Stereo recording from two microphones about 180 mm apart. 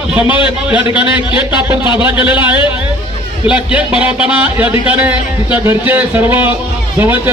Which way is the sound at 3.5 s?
5° right (ahead or behind).